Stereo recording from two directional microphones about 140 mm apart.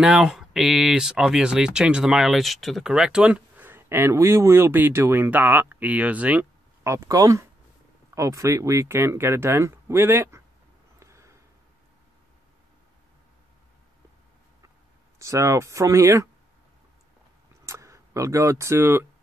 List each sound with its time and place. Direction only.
0.0 s speech: 5° right (ahead or behind)
11.0 s a sound: 20° right (ahead or behind)
15.1 s speech: 20° right (ahead or behind)
17.6 s speech: 20° right (ahead or behind)